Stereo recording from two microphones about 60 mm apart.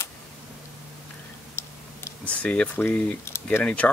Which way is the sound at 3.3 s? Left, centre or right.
Left.